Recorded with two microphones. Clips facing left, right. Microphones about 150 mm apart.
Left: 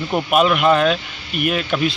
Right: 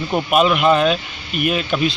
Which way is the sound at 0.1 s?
Centre (ahead or behind).